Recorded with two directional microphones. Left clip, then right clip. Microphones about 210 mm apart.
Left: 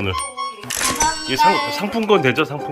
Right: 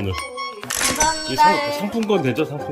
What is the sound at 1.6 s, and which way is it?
Speech, 5° right (ahead or behind).